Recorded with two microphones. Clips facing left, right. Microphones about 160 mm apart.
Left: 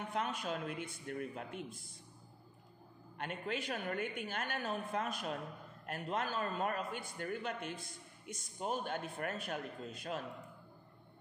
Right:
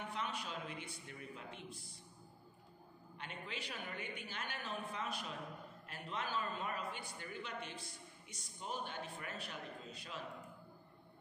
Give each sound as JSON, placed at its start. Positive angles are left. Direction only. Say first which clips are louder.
{"t": 0.1, "sound": "a woman's voice", "louder": "left 9 dB", "side_deg": 50}
{"t": 3.2, "sound": "a woman's voice", "louder": "left 8 dB", "side_deg": 50}